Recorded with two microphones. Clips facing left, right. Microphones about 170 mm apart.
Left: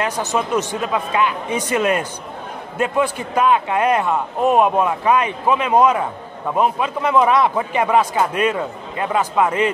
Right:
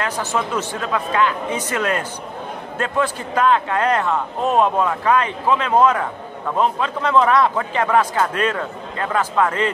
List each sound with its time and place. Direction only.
0.0 s a man's voice: 20° left (ahead or behind)